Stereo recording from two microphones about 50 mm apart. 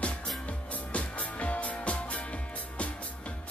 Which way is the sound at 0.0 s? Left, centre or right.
Left.